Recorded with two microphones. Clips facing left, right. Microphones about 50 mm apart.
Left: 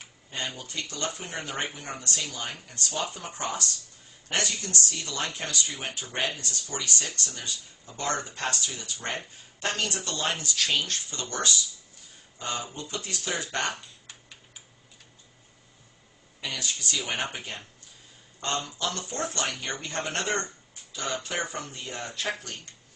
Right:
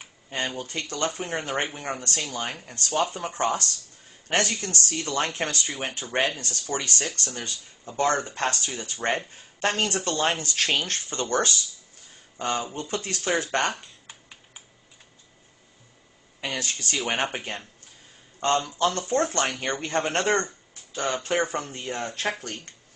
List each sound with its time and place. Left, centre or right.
0.3 s speech: right
16.3 s speech: right